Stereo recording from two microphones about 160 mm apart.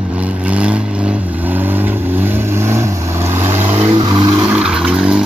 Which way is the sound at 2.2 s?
15° right (ahead or behind).